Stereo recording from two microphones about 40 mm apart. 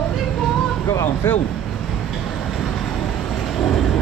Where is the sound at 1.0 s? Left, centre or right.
Left.